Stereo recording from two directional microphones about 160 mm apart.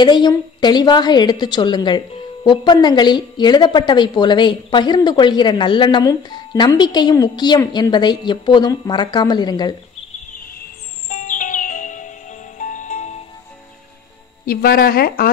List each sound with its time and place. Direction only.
0.0 s a woman's voice: 30° left (ahead or behind)
11.1 s music: 55° left (ahead or behind)
14.4 s speech: 70° left (ahead or behind)